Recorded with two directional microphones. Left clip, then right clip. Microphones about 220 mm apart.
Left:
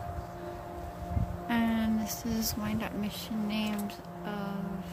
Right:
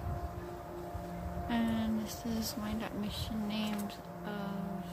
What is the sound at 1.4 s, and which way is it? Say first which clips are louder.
Speech: left 5 dB; 20° left (ahead or behind).